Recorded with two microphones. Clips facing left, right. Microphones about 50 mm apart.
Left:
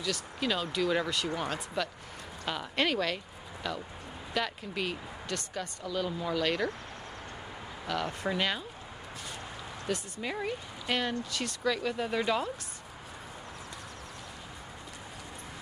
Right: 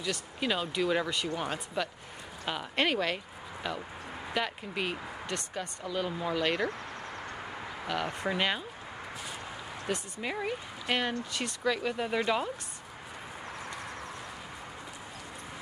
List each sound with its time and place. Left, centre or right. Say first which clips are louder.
0.0 s speech: even; right
7.8 s speech: even; right
9.9 s speech: even; right
10.2 s speech: right 1 dB; centre